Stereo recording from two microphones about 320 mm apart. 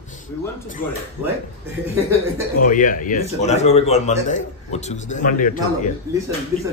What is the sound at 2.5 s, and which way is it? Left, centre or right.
A man's voice, left.